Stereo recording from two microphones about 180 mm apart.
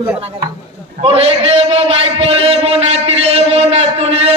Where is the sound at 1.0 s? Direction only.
30° right (ahead or behind).